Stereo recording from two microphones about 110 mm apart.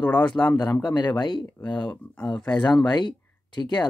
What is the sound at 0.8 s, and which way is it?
Speech, 40° left (ahead or behind).